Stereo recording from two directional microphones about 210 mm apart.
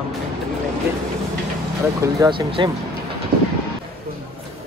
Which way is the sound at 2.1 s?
20° right (ahead or behind).